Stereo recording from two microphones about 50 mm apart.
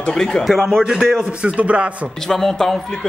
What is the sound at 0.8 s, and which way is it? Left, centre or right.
A man's voice, centre.